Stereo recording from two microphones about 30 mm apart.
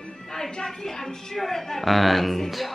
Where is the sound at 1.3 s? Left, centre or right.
Centre.